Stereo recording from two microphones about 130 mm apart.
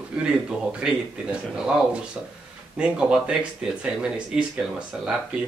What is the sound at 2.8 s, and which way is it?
Speech, 5° right (ahead or behind).